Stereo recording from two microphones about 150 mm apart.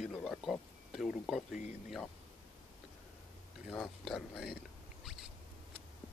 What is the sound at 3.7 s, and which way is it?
Speech, centre (ahead or behind).